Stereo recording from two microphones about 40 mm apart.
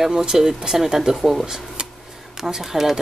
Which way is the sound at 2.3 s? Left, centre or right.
Centre.